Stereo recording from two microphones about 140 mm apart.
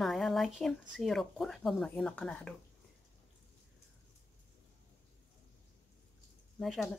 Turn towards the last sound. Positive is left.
turn(degrees=0)  # may be behind; listen again after turning